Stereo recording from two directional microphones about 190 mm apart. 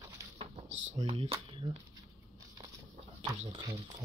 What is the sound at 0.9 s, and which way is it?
Speech, 30° right (ahead or behind).